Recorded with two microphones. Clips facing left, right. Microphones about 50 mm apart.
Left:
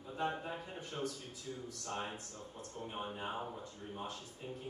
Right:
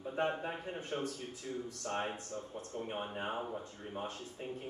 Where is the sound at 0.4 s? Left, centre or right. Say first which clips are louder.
Right 3 dB; right.